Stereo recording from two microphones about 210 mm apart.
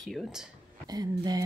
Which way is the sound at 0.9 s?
20° right (ahead or behind).